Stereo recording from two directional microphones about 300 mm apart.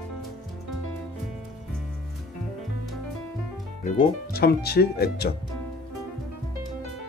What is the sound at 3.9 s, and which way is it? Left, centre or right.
Speech, left.